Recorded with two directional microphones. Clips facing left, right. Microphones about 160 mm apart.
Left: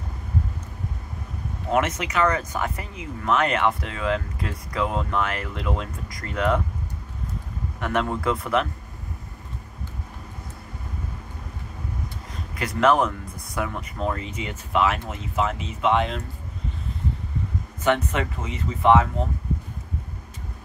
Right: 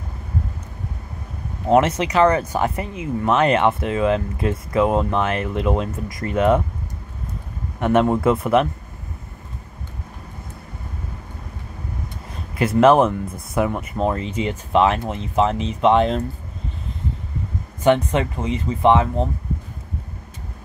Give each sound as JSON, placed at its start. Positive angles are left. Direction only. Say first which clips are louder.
{"t": 1.7, "sound": "speech", "louder": "right 7 dB", "side_deg": -30}
{"t": 7.8, "sound": "speech", "louder": "right 8 dB", "side_deg": -25}
{"t": 12.5, "sound": "speech", "louder": "right 6 dB", "side_deg": -25}
{"t": 17.8, "sound": "speech", "louder": "right 6 dB", "side_deg": -30}